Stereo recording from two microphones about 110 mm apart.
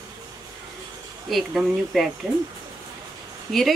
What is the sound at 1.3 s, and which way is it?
Speech, centre (ahead or behind).